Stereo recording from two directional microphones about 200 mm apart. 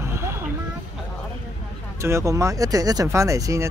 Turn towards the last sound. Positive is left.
turn(degrees=-15)  # may be behind; listen again after turning